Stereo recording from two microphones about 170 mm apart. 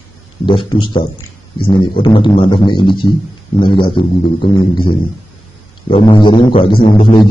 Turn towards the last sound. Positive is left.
turn(degrees=30)  # may be behind; listen again after turning